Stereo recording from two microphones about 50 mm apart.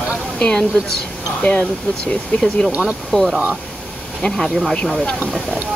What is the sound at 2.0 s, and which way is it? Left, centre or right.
Speech, left.